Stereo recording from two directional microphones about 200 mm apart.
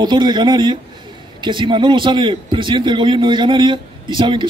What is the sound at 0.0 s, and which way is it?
A man's voice, 20° right (ahead or behind).